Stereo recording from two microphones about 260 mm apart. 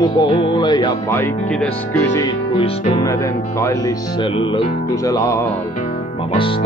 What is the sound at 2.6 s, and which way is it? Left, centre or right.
Speech, centre.